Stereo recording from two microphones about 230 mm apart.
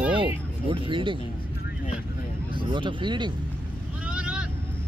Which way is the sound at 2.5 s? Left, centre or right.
Right.